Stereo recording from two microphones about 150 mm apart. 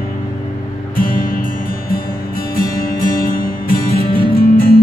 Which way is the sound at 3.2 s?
70° left (ahead or behind).